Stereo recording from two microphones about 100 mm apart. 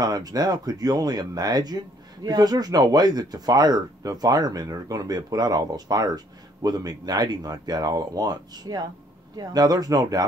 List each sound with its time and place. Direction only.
0.0 s speech: 40° right (ahead or behind)